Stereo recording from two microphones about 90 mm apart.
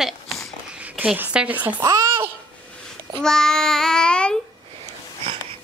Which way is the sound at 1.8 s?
40° right (ahead or behind).